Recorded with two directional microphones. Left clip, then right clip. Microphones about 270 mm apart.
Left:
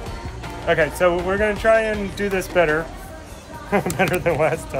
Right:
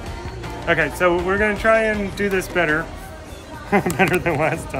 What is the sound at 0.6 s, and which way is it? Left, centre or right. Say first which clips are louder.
Speech: even; centre.